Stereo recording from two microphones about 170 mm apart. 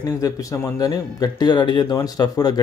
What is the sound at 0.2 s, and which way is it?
Speech, 20° left (ahead or behind).